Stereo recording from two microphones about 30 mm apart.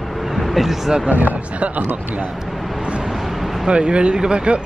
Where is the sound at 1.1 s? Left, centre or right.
Right.